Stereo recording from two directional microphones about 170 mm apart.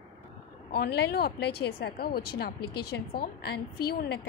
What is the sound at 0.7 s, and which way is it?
A woman's voice, 75° left (ahead or behind).